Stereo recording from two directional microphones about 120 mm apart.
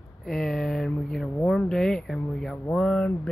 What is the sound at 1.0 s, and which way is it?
Speech, 5° left (ahead or behind).